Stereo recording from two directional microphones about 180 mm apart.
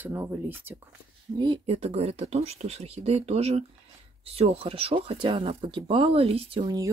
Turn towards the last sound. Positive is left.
turn(degrees=-25)  # may be behind; listen again after turning